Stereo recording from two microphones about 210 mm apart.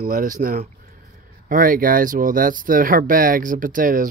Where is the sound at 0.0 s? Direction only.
40° right (ahead or behind).